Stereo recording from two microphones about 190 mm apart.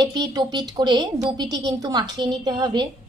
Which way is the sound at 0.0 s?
20° right (ahead or behind).